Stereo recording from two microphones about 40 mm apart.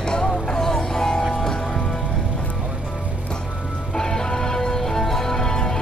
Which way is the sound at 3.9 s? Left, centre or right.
Centre.